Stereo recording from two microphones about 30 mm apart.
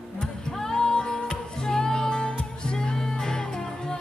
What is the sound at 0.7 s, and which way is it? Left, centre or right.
Music, left.